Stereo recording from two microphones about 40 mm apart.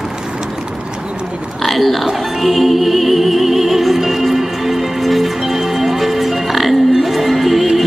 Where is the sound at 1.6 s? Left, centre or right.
Centre.